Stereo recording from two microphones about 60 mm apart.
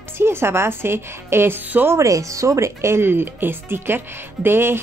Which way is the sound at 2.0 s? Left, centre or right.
Right.